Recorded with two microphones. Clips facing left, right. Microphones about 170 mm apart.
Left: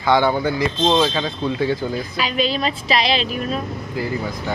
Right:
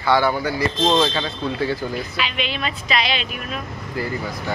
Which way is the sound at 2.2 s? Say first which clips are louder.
Left 7 dB; 40° left (ahead or behind).